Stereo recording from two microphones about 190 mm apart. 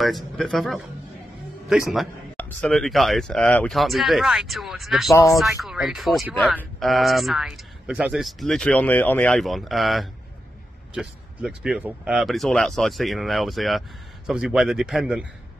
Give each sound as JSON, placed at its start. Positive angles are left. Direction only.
{"t": 0.0, "sound": "speech", "side_deg": 0}
{"t": 5.1, "sound": "speech", "side_deg": 15}
{"t": 5.4, "sound": "speech", "side_deg": 0}